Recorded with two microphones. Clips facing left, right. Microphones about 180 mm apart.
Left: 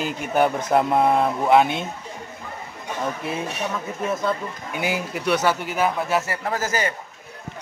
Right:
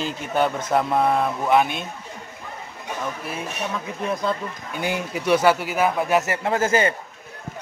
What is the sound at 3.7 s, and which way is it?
Speech, centre (ahead or behind).